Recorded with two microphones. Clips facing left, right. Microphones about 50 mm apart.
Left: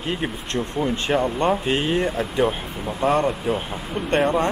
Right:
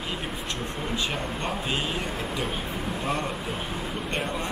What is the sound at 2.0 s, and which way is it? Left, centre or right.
Speech, left.